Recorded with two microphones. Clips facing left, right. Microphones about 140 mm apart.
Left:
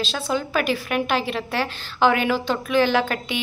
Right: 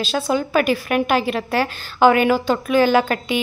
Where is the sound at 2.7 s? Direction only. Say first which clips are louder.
Right 4 dB; 45° right (ahead or behind).